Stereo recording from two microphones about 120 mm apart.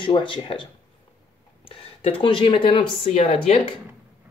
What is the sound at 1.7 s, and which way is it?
Speech, 50° left (ahead or behind).